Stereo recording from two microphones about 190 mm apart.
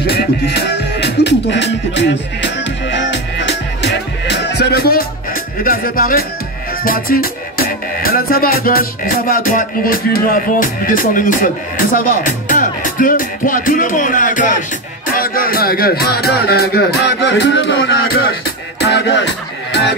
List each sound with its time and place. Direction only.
0.0 s music: 55° left (ahead or behind)
15.0 s speech: 50° left (ahead or behind)
18.8 s music: 65° left (ahead or behind)